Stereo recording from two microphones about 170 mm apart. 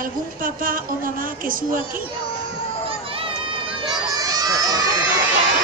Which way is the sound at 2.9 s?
35° right (ahead or behind).